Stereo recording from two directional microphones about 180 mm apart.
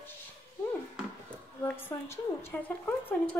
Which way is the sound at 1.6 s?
15° left (ahead or behind).